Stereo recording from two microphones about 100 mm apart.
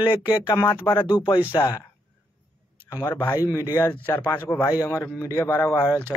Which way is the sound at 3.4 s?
35° left (ahead or behind).